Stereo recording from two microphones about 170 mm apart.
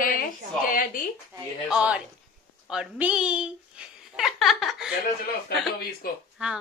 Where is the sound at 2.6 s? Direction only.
5° right (ahead or behind).